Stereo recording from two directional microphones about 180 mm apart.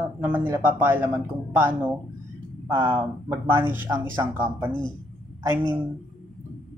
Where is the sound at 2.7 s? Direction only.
25° right (ahead or behind).